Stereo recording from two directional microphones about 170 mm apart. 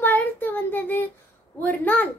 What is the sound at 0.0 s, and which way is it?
Child singing, 10° left (ahead or behind).